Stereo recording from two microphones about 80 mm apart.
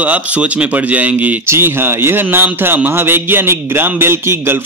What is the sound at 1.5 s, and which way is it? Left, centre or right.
Speech, right.